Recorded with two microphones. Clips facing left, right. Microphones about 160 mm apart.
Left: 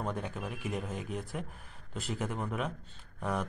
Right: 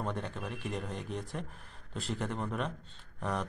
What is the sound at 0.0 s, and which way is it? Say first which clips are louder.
A man's voice: left 1 dB; 5° left (ahead or behind).